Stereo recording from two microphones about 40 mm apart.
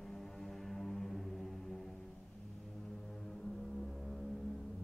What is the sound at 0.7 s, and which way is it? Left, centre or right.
Music, centre.